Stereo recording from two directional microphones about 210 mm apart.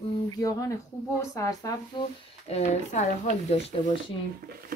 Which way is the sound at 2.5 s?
35° left (ahead or behind).